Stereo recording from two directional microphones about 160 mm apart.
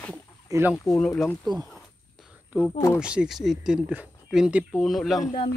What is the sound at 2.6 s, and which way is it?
Speech, 20° left (ahead or behind).